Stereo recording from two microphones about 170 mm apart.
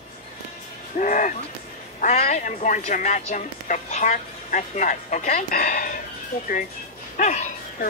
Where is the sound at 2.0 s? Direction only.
40° left (ahead or behind).